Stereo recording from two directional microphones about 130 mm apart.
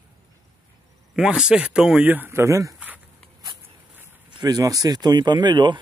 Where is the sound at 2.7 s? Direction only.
10° right (ahead or behind).